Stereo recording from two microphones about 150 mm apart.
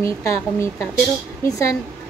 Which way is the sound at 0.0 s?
20° left (ahead or behind).